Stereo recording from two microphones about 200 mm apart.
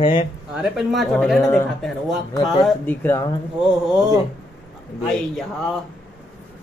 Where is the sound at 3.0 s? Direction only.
15° left (ahead or behind).